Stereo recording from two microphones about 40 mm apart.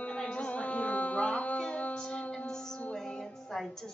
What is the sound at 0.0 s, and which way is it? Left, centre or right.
Music, left.